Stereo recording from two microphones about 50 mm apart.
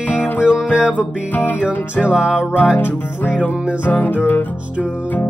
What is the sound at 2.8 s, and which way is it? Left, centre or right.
Music, left.